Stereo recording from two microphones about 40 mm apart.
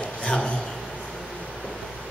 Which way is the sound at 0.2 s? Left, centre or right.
Left.